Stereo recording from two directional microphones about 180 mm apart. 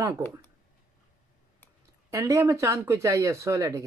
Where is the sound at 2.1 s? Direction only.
15° right (ahead or behind).